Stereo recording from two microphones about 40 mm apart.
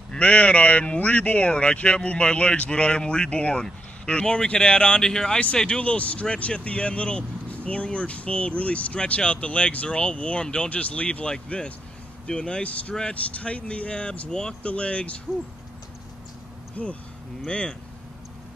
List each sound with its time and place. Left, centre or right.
0.2 s a man's voice: left; by 5.4 s centre
5.7 s a man's voice: left
12.6 s a man's voice: left
16.8 s a man's voice: left
17.5 s speech: left